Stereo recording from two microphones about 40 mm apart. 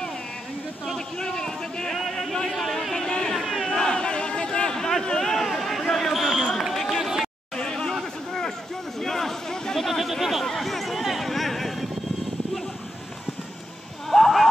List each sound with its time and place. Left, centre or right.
0.9 s a man's voice: centre
2.5 s speech: centre
3.3 s crowd: centre
3.7 s a sound: centre
6.7 s run: centre
7.0 s run: centre
9.0 s a man's voice: centre
9.8 s speech: centre
10.4 s chatter: centre
14.0 s a sound: centre